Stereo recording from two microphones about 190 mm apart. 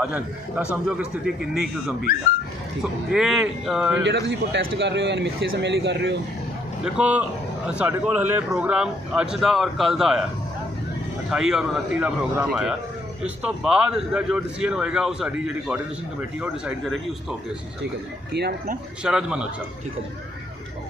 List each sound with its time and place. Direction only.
0.0 s a man's voice: 5° right (ahead or behind)
2.8 s a man's voice: centre (ahead or behind)
4.0 s a man's voice: 65° right (ahead or behind)
6.8 s a man's voice: 5° right (ahead or behind)
11.2 s a man's voice: 5° right (ahead or behind)
18.3 s a man's voice: 60° right (ahead or behind)
19.0 s a man's voice: 5° right (ahead or behind)